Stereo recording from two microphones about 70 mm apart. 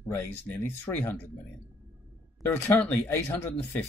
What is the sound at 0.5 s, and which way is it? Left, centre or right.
Speech, left.